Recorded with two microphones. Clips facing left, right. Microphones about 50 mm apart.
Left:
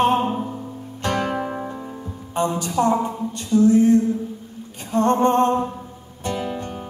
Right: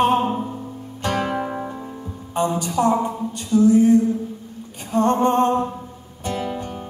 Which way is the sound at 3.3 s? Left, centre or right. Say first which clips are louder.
Even; centre.